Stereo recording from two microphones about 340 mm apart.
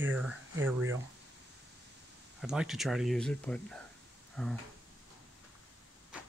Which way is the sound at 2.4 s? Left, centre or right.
Centre.